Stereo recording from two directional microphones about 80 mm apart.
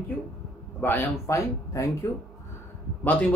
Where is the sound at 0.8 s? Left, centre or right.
Left.